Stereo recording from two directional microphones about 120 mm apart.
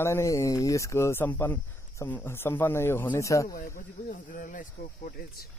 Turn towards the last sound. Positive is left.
turn(degrees=90)